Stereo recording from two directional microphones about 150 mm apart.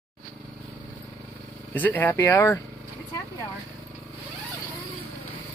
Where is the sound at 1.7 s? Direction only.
10° left (ahead or behind).